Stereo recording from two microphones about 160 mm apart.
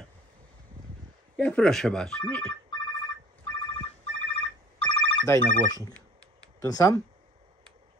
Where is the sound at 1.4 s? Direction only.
5° left (ahead or behind).